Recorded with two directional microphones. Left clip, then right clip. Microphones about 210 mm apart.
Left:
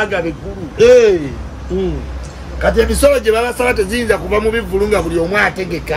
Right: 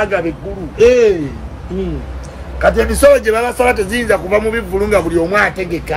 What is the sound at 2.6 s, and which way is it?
Speech, 5° right (ahead or behind).